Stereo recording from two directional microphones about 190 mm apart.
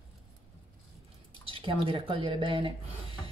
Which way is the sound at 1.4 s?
25° right (ahead or behind).